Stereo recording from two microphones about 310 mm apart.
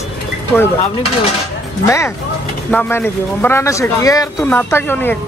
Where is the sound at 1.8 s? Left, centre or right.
Centre.